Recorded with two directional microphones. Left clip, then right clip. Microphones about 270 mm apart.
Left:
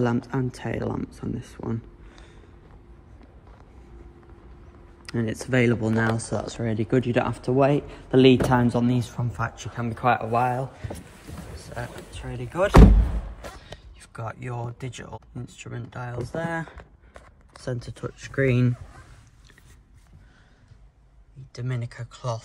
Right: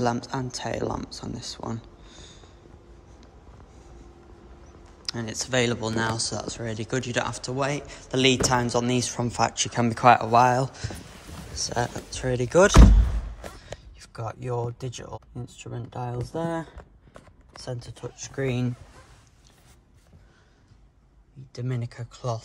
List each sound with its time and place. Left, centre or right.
0.0 s speech: centre
5.0 s speech: centre
11.3 s boat: centre
11.7 s speech: centre
13.6 s speech: centre
21.5 s speech: centre